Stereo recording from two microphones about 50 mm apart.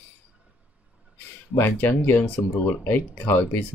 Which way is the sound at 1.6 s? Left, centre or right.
Left.